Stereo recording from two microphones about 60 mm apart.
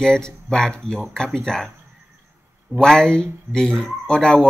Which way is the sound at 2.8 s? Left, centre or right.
Centre.